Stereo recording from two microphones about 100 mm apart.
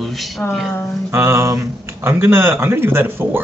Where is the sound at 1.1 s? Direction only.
25° right (ahead or behind).